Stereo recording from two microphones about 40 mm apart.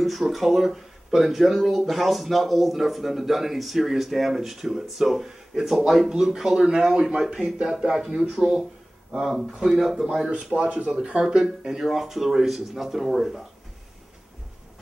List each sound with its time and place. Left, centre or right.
0.0 s speech: centre
9.1 s speech: centre
10.3 s speech: right
11.6 s speech: centre